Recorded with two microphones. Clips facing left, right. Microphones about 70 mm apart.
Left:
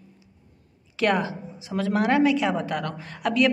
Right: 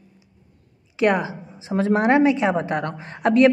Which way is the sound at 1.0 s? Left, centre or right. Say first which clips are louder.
Right 3 dB; right.